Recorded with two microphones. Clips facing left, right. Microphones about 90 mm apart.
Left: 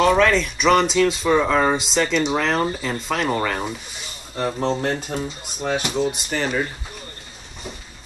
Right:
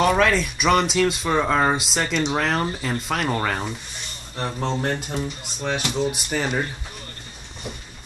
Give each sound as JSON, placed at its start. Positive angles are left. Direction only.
{"t": 0.0, "sound": "speech", "side_deg": -5}
{"t": 6.3, "sound": "speech", "side_deg": -15}